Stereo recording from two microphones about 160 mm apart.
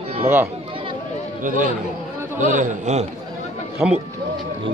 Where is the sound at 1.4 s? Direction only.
55° right (ahead or behind).